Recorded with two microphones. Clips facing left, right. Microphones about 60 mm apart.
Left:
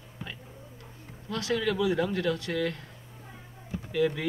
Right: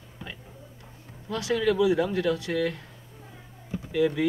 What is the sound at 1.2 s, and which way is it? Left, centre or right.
Speech, centre.